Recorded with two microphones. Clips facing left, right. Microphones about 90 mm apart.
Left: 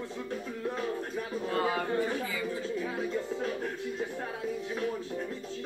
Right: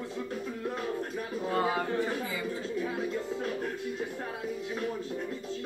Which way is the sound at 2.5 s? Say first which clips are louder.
Even; 5° right (ahead or behind).